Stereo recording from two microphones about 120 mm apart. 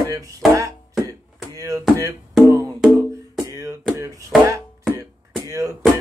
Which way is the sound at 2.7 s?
5° right (ahead or behind).